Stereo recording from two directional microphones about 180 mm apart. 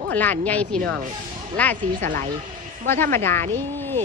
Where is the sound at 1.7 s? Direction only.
45° right (ahead or behind).